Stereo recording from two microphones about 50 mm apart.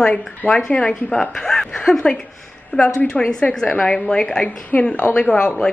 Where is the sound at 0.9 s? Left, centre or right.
Centre.